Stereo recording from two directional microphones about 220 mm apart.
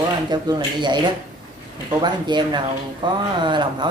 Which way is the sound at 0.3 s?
20° right (ahead or behind).